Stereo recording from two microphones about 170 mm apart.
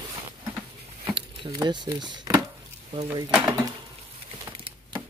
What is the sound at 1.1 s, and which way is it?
Speech, 25° right (ahead or behind).